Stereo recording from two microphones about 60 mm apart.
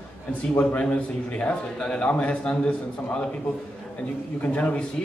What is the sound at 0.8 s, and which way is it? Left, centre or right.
A man's voice, centre.